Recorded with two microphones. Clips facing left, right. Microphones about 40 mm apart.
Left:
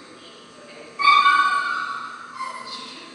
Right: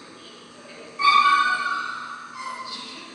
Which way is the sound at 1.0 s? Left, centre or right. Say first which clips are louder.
Left 2 dB; centre.